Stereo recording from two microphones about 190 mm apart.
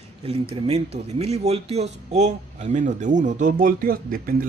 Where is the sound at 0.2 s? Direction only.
30° right (ahead or behind).